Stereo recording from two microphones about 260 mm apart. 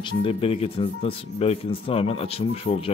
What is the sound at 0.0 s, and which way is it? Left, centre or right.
Speech, left.